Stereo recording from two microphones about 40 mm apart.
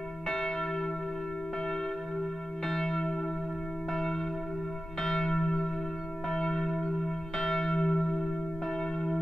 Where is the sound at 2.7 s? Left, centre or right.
Centre.